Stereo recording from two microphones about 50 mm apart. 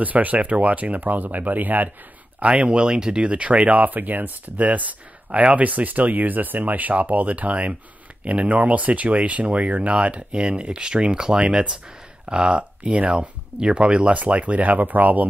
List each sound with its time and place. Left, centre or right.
0.0 s speech: right
2.4 s speech: right